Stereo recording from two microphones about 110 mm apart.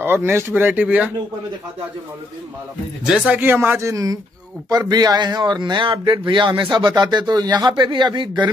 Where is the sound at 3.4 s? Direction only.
20° right (ahead or behind).